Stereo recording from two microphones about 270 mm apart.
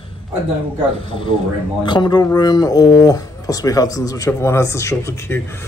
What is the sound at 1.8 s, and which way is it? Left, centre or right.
A man's voice, centre.